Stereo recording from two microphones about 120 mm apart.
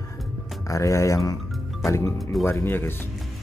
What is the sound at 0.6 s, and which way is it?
Speech, 25° left (ahead or behind).